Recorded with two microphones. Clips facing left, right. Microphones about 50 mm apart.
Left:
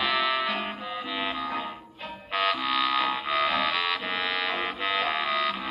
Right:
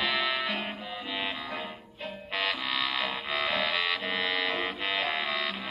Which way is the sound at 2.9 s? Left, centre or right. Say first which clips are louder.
Left 6 dB; centre.